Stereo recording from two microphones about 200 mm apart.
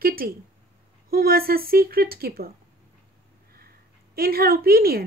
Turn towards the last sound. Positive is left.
turn(degrees=-50)  # may be behind; listen again after turning